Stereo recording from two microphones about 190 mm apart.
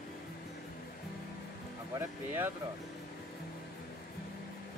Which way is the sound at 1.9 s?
10° right (ahead or behind).